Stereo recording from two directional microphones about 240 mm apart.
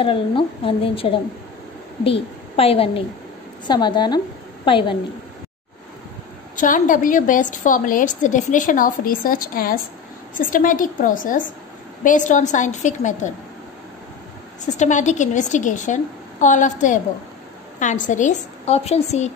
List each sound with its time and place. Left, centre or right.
0.0 s a woman's voice: left
2.5 s a woman's voice: left
6.5 s a woman's voice: left
14.6 s a woman's voice: left